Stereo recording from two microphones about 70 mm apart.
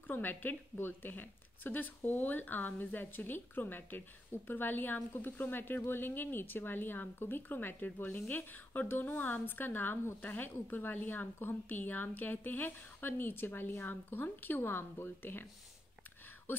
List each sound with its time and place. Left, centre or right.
0.0 s speech: left